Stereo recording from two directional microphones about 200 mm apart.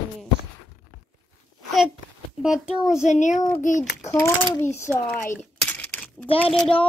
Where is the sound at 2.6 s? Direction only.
5° right (ahead or behind).